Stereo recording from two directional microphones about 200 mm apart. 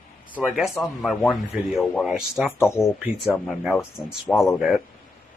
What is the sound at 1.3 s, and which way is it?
Speech, centre (ahead or behind).